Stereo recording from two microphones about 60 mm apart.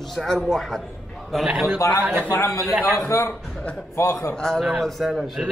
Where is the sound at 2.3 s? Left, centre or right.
Left.